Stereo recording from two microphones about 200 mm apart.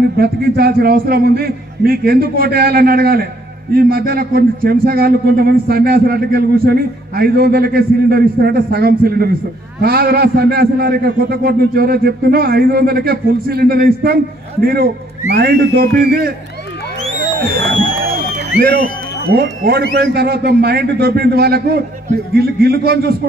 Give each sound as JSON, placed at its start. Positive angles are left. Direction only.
{"t": 0.2, "sound": "a man's voice", "side_deg": -50}
{"t": 18.6, "sound": "a man's voice", "side_deg": -50}